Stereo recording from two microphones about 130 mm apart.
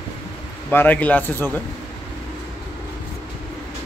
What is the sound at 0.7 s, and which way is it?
Speech, 15° left (ahead or behind).